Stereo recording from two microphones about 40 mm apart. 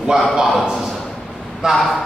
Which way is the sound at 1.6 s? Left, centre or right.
Centre.